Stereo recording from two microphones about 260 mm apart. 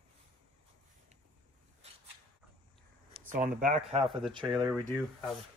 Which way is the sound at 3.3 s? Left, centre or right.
Right.